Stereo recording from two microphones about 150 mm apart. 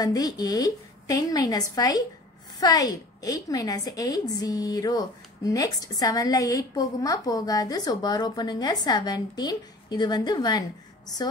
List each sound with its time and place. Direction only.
0.0 s a woman's voice: 25° left (ahead or behind)